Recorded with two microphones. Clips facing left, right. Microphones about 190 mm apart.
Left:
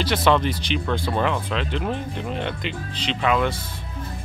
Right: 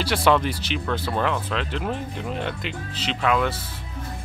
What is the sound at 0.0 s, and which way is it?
Speech, 5° right (ahead or behind).